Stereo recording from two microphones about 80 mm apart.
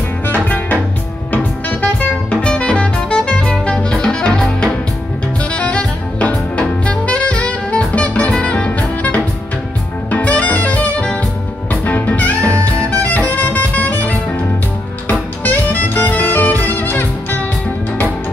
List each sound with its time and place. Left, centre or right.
0.3 s music: left
10.1 s jazz: centre
11.7 s music: centre